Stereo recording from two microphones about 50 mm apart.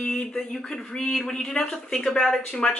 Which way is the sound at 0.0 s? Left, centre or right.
Centre.